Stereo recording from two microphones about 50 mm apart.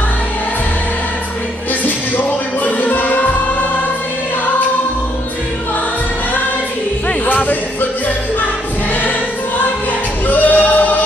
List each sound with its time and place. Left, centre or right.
2.1 s music: left
7.2 s music: left
10.2 s music: left